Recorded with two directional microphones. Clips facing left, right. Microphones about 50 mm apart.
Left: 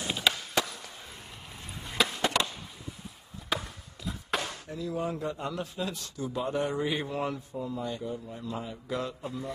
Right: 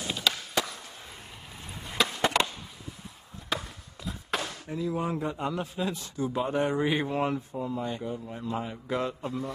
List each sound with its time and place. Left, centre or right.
0.0 s a sound: centre
1.8 s skateboard: centre
2.1 s chop: right
3.4 s chop: centre
4.6 s a man's voice: right